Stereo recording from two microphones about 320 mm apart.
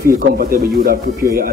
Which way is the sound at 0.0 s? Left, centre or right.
Right.